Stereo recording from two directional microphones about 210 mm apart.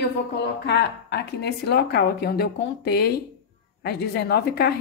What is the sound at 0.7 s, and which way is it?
A woman's voice, 55° left (ahead or behind).